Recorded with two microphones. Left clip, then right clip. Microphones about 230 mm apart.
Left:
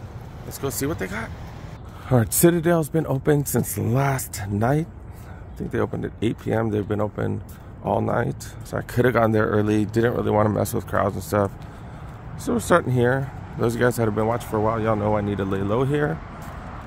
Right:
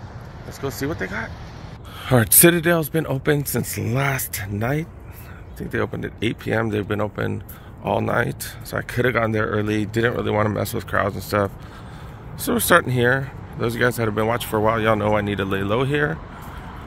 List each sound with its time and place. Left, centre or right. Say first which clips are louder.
0.5 s speech: even; centre